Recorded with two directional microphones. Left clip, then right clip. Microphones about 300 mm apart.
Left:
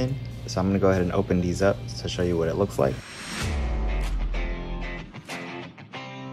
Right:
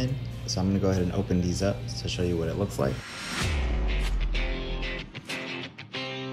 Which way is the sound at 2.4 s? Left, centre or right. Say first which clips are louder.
Left 6 dB; left.